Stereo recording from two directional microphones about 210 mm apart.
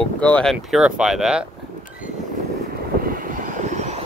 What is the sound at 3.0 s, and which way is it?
Vehicle, 40° right (ahead or behind).